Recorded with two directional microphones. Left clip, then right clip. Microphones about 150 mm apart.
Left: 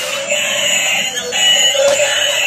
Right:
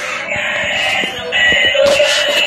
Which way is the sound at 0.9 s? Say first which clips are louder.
Right 1 dB; 65° left (ahead or behind).